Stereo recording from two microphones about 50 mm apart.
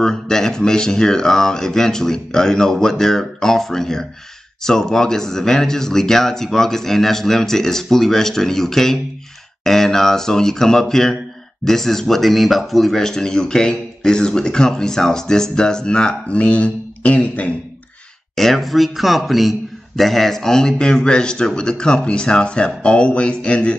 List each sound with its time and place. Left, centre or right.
0.0 s speech: centre
16.3 s speech: left
18.3 s speech: centre; by 23.8 s left